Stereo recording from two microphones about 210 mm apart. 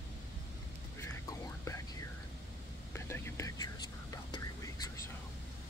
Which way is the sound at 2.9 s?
10° left (ahead or behind).